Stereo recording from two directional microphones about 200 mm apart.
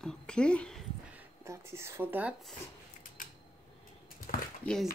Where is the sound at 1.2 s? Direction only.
15° right (ahead or behind).